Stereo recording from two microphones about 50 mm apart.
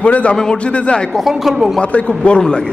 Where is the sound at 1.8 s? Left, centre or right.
Left.